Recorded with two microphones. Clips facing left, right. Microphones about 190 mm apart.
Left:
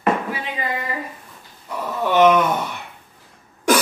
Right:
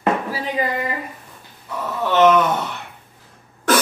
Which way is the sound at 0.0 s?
35° right (ahead or behind).